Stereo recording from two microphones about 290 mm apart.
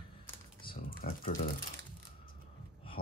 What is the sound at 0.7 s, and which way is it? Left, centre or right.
Typing, left.